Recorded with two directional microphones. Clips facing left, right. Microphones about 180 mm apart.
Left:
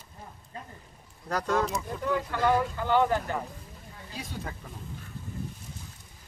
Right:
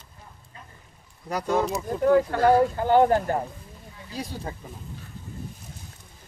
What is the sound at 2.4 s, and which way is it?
Speech, 40° right (ahead or behind).